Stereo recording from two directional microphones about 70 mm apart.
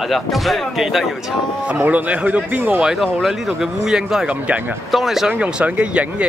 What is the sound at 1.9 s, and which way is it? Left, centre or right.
Speech, right.